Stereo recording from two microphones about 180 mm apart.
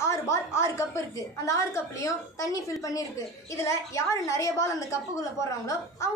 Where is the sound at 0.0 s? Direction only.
15° left (ahead or behind).